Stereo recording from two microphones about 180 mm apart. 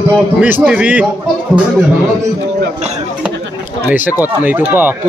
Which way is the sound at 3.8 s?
10° right (ahead or behind).